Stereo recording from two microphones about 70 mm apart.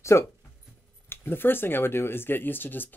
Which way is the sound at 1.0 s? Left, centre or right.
Left.